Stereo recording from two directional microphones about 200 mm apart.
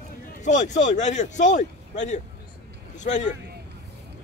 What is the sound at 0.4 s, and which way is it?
Speech, 40° left (ahead or behind).